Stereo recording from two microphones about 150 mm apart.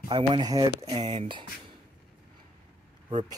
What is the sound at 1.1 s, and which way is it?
Speech, 40° right (ahead or behind).